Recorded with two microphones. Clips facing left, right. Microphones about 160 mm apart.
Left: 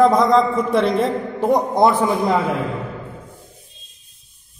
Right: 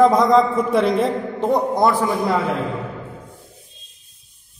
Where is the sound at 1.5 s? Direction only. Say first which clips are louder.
Left 2 dB; 20° left (ahead or behind).